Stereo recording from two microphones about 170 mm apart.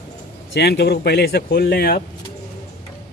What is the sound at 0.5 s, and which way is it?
Speech, 75° left (ahead or behind).